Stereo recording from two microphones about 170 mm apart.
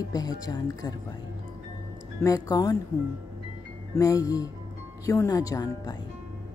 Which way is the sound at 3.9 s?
20° left (ahead or behind).